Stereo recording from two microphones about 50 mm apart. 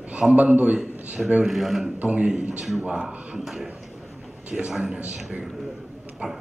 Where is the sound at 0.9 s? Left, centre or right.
Right.